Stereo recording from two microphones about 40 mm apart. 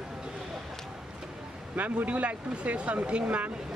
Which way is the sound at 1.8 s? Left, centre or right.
Right.